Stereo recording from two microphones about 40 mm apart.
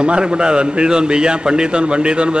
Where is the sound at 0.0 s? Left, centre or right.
Right.